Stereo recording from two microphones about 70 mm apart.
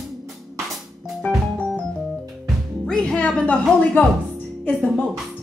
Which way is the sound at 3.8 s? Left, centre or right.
Centre.